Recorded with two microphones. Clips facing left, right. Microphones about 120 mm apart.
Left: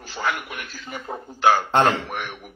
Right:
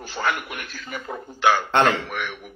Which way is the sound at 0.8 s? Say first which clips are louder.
Even; 30° left (ahead or behind).